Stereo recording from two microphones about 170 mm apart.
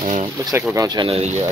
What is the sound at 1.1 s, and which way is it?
Speech, 40° right (ahead or behind).